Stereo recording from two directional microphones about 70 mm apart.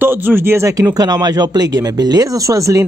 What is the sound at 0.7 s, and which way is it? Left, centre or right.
Speech, right.